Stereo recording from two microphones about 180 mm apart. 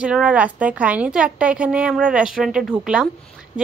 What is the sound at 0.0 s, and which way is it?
A woman's voice, 5° right (ahead or behind).